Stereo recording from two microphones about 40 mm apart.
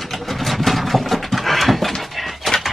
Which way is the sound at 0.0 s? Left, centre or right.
Centre.